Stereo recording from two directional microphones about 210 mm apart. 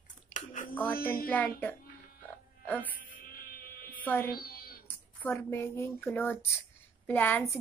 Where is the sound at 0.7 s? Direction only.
10° left (ahead or behind).